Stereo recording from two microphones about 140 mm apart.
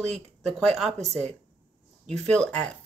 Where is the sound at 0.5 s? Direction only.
Centre (ahead or behind).